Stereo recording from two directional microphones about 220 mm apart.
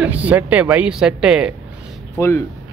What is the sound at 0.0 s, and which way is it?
Speech, 5° right (ahead or behind).